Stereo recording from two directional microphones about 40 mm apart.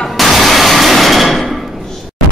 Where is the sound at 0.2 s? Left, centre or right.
Centre.